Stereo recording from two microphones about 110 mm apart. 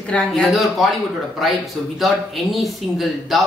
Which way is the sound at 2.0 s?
Centre (ahead or behind).